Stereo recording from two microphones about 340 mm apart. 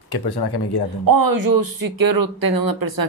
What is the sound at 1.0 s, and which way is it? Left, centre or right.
Speech, right.